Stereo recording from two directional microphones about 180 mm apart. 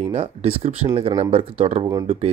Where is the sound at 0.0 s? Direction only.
35° right (ahead or behind).